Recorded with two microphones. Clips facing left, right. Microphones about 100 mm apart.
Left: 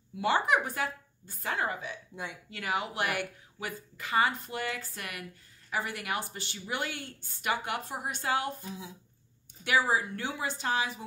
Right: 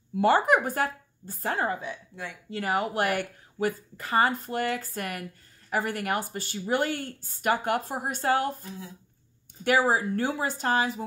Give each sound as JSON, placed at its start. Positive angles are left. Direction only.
{"t": 0.1, "sound": "speech", "side_deg": -45}
{"t": 9.7, "sound": "speech", "side_deg": -45}